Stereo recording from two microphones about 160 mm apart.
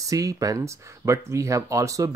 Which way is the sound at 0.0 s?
20° right (ahead or behind).